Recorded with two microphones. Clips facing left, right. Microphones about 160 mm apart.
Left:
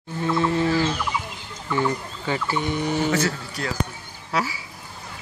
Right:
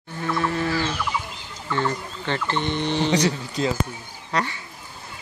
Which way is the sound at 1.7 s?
10° left (ahead or behind).